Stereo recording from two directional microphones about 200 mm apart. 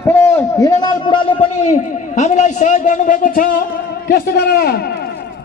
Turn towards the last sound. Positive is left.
turn(degrees=50)  # may be behind; listen again after turning